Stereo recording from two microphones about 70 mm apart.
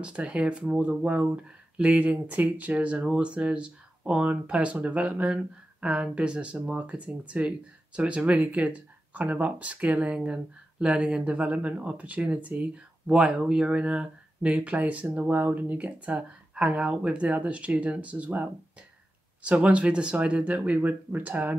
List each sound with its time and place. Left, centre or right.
0.0 s speech: centre